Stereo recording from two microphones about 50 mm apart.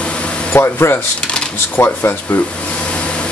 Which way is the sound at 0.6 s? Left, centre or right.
Left.